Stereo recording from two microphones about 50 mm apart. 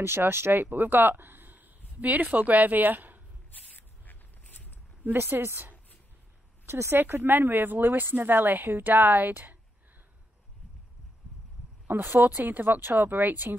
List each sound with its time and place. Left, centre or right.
0.0 s speech: right
3.5 s a sound: left
5.1 s speech: right
6.9 s speech: right
12.2 s speech: right